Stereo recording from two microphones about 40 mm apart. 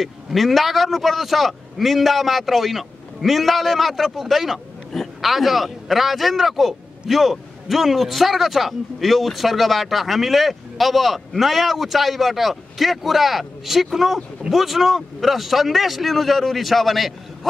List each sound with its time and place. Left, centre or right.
0.0 s a man's voice: centre